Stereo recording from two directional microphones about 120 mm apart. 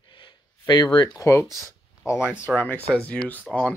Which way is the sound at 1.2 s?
25° left (ahead or behind).